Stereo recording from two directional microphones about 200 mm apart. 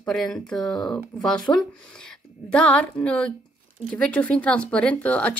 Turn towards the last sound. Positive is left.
turn(degrees=5)  # may be behind; listen again after turning